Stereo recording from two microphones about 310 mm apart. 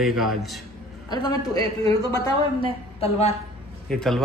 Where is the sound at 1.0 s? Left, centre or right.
Centre.